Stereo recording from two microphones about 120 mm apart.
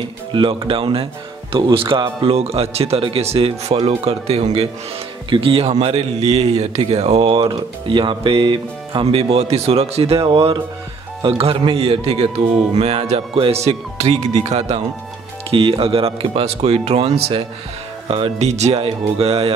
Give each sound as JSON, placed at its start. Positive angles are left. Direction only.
{"t": 0.3, "sound": "speech", "side_deg": -45}
{"t": 5.3, "sound": "speech", "side_deg": -50}
{"t": 5.7, "sound": "speech", "side_deg": -60}
{"t": 15.5, "sound": "speech", "side_deg": -50}